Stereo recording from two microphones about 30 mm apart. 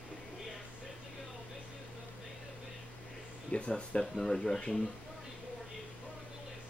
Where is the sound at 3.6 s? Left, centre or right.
Left.